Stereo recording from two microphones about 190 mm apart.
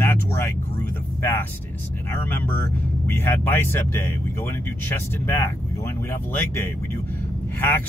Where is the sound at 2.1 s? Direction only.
10° left (ahead or behind).